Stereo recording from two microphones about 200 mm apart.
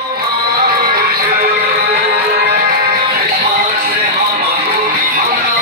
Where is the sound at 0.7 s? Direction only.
50° right (ahead or behind).